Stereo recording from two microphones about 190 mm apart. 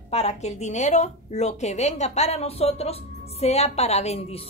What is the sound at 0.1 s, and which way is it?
A woman's voice, 35° left (ahead or behind).